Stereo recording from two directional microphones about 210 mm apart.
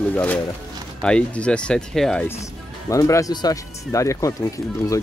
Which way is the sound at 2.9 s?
15° left (ahead or behind).